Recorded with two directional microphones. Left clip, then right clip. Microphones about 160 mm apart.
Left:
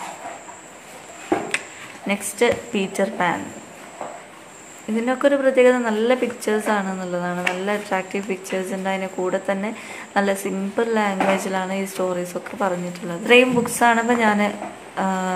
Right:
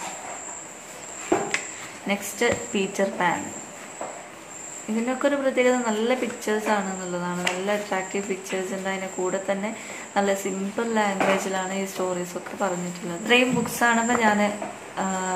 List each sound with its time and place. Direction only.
2.0 s a woman's voice: 35° left (ahead or behind)
5.0 s a woman's voice: 40° left (ahead or behind)